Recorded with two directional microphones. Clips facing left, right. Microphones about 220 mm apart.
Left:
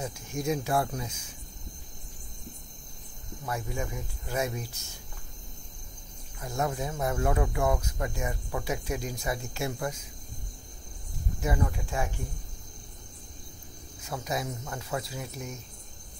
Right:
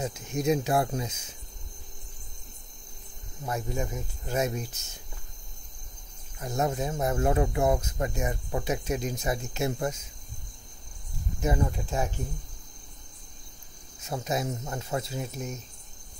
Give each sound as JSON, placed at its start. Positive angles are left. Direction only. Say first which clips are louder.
{"t": 0.0, "sound": "speech", "louder": "right 4 dB", "side_deg": -20}
{"t": 3.4, "sound": "speech", "louder": "right 2 dB", "side_deg": -20}
{"t": 6.4, "sound": "speech", "louder": "right 3 dB", "side_deg": -20}
{"t": 11.4, "sound": "speech", "louder": "right 3 dB", "side_deg": -25}
{"t": 14.0, "sound": "speech", "louder": "right 3 dB", "side_deg": -25}